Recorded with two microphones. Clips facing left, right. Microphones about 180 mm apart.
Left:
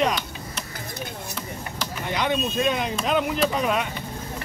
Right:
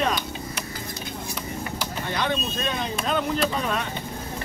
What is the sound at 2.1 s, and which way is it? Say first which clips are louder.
Speech: left 3 dB; 15° left (ahead or behind).